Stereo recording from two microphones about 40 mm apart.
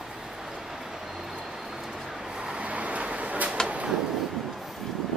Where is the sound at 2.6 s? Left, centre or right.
Right.